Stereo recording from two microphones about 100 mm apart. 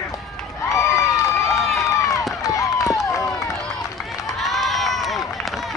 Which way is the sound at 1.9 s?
30° left (ahead or behind).